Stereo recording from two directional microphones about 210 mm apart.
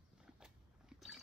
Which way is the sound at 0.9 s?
Centre (ahead or behind).